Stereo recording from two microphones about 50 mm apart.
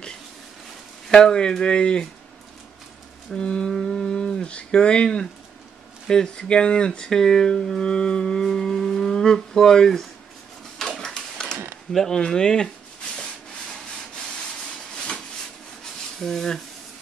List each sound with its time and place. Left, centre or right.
1.0 s speech: centre
3.3 s speech: centre
11.1 s a sound: centre
11.9 s speech: centre
15.0 s a sound: centre
16.2 s speech: centre